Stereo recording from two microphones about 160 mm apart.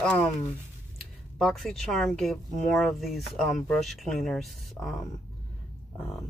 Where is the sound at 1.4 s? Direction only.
Centre (ahead or behind).